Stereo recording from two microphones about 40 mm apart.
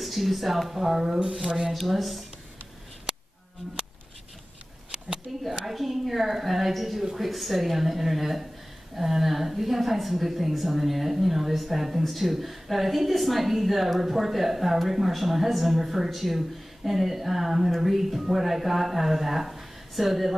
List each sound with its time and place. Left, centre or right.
0.0 s a woman's voice: centre
3.1 s a sound: centre
5.5 s a woman's voice: centre